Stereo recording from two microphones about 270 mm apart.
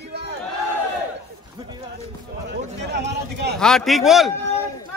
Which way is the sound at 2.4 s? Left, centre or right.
Right.